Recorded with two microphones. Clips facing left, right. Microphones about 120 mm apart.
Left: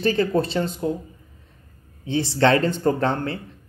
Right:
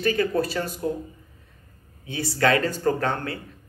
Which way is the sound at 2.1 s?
25° left (ahead or behind).